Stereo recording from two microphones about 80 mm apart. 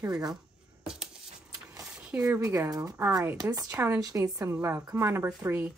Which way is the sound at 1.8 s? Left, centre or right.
Centre.